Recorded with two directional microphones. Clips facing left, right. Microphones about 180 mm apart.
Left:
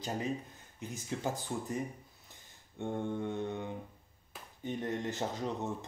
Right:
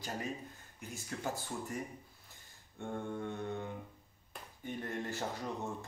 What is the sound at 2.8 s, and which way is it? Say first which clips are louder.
Speech: left 4 dB; 20° left (ahead or behind).